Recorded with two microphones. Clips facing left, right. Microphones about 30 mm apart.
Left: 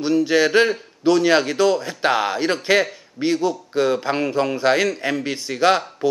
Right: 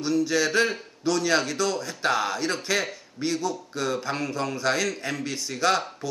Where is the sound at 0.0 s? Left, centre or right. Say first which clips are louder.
Left 6 dB; left.